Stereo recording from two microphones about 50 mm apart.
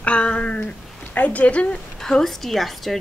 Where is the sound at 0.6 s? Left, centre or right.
Left.